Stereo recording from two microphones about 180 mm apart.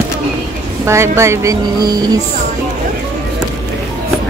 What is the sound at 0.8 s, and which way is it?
Speech, 15° right (ahead or behind).